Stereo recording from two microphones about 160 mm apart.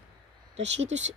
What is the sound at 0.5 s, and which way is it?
Speech, 45° right (ahead or behind).